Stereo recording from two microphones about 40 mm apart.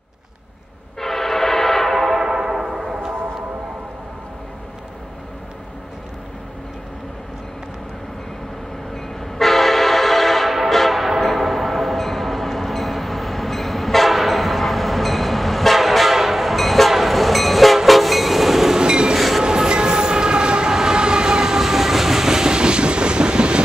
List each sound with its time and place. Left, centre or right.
1.0 s train: centre
2.1 s a sound: centre
8.9 s train: centre
18.8 s train: right
19.1 s train: centre
19.4 s train: centre
21.5 s train: centre; by 23.6 s right